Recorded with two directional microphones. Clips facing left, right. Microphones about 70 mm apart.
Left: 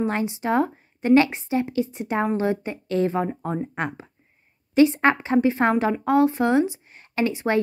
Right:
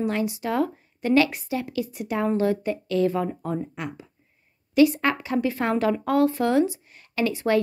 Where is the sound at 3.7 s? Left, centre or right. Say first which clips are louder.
Left 5 dB; left.